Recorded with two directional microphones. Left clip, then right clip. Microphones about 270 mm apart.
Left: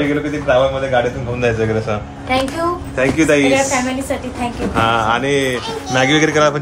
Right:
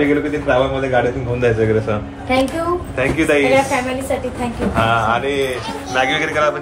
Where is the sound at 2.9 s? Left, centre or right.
Left.